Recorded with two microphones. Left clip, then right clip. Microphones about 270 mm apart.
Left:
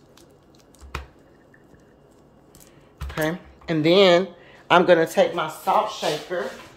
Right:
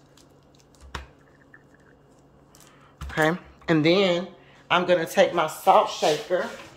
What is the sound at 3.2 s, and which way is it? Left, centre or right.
Speech, centre.